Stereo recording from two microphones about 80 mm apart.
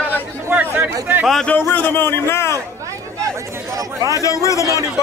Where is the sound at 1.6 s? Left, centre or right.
Left.